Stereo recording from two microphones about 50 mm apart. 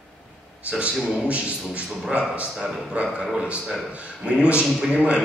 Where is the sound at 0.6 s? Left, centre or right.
Right.